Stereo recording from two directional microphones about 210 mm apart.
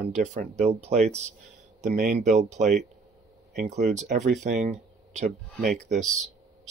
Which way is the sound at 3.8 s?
35° right (ahead or behind).